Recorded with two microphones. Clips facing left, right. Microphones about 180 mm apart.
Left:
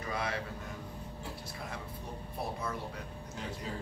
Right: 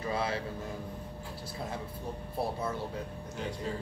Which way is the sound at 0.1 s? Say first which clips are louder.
Right 3 dB; 30° right (ahead or behind).